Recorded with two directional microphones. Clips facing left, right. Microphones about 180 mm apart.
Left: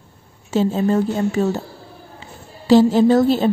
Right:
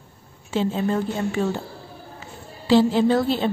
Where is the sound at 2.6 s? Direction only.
40° left (ahead or behind).